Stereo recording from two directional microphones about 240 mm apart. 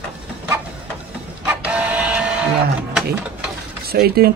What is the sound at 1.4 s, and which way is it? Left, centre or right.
Printer, centre.